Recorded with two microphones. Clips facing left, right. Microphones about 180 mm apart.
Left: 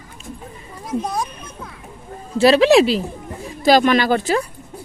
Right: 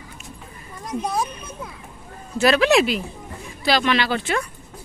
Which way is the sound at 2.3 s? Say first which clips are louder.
Left 5 dB; 30° left (ahead or behind).